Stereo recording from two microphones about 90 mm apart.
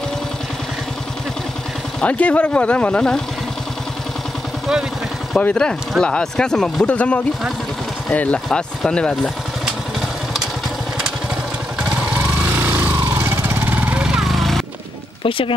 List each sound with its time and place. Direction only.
2.0 s speech: 15° left (ahead or behind)
5.4 s speech: 10° left (ahead or behind)
12.5 s vehicle: 20° right (ahead or behind); by 14.6 s centre (ahead or behind)
15.2 s a sound: 80° left